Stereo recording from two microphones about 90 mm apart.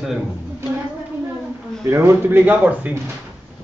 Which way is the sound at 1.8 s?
30° right (ahead or behind).